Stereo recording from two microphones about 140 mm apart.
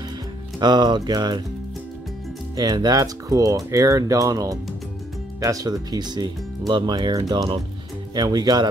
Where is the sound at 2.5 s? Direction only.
30° right (ahead or behind).